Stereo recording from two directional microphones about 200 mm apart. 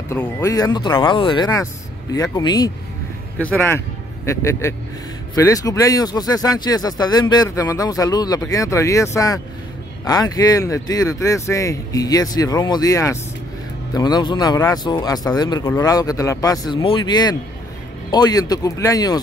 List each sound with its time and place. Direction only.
0.1 s speech: 15° left (ahead or behind)